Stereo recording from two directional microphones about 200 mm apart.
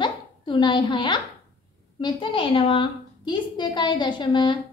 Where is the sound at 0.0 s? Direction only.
25° left (ahead or behind).